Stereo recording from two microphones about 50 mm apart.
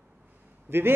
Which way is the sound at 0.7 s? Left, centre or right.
Right.